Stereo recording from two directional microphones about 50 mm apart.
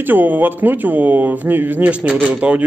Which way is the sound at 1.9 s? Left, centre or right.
Right.